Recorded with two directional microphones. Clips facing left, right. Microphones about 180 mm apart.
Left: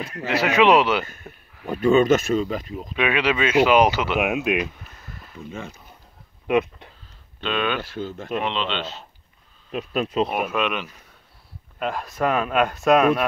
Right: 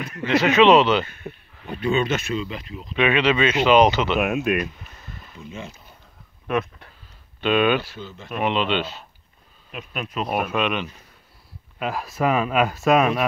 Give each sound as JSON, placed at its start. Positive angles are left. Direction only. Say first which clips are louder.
{"t": 0.3, "sound": "speech", "louder": "right 2 dB", "side_deg": 10}
{"t": 1.0, "sound": "speech", "louder": "right 5 dB", "side_deg": 45}
{"t": 3.0, "sound": "speech", "louder": "right 3 dB", "side_deg": 10}
{"t": 6.4, "sound": "speech", "louder": "left 4 dB", "side_deg": 15}
{"t": 7.3, "sound": "speech", "louder": "right 6 dB", "side_deg": -10}
{"t": 7.8, "sound": "speech", "louder": "left 7 dB", "side_deg": 50}
{"t": 8.4, "sound": "speech", "louder": "right 5 dB", "side_deg": -10}
{"t": 9.7, "sound": "speech", "louder": "left 7 dB", "side_deg": 30}
{"t": 10.3, "sound": "speech", "louder": "right 1 dB", "side_deg": 0}